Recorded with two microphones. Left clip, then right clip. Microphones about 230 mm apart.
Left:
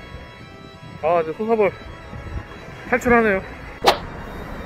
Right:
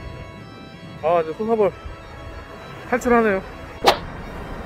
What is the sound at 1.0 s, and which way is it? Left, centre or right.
Speech, centre.